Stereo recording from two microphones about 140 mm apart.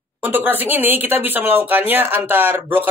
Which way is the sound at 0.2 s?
15° right (ahead or behind).